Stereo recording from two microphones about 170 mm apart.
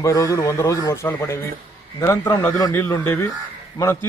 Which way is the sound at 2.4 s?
20° left (ahead or behind).